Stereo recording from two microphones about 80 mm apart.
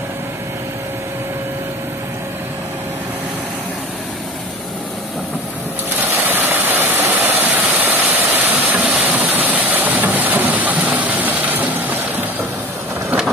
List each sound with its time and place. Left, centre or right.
5.9 s vehicle: right